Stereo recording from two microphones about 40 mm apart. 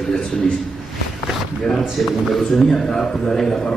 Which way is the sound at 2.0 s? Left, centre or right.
Centre.